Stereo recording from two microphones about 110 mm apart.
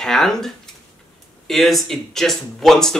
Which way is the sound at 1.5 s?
Centre (ahead or behind).